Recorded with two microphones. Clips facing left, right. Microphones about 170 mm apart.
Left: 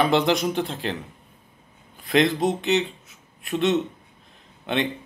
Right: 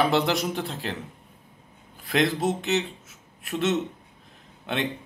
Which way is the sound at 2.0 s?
Centre (ahead or behind).